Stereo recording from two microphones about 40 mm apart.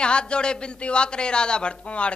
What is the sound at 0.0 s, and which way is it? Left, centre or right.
A man's voice, left.